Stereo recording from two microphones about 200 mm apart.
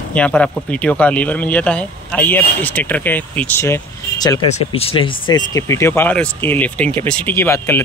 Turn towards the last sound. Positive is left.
turn(degrees=15)  # may be behind; listen again after turning